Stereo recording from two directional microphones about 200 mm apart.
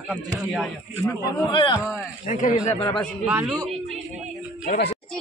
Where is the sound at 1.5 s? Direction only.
20° left (ahead or behind).